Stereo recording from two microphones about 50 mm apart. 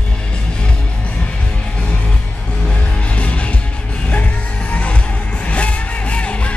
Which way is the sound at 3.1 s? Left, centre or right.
Left.